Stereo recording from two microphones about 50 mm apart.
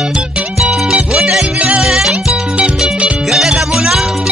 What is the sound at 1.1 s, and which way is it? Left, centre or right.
Music, centre.